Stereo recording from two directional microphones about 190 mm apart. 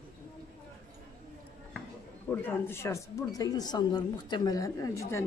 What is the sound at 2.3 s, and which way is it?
A woman's voice, 10° left (ahead or behind).